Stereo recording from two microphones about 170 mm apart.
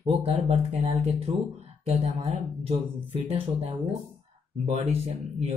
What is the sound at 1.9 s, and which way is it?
Speech, 40° right (ahead or behind).